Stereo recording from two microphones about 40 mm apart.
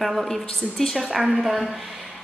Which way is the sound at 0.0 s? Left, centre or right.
Centre.